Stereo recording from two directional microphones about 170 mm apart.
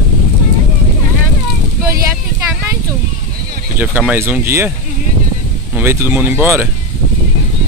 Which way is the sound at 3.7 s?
10° right (ahead or behind).